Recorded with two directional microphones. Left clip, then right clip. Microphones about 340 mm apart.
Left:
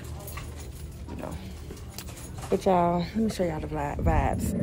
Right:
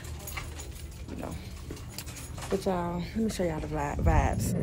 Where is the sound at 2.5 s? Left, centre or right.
Centre.